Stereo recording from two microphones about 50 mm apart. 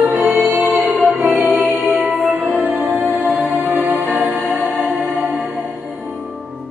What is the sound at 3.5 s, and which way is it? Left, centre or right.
Music, right.